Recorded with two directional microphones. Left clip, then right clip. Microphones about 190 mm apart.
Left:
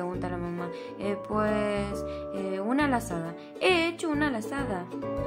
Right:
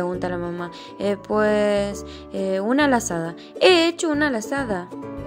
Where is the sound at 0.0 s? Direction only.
30° right (ahead or behind).